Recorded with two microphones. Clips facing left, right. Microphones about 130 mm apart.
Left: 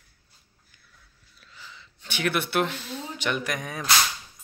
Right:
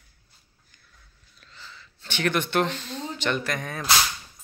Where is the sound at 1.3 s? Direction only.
10° left (ahead or behind).